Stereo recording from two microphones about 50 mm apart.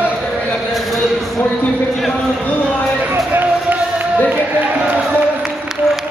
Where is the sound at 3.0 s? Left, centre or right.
Right.